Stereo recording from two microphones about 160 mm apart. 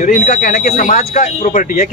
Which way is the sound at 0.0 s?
55° left (ahead or behind).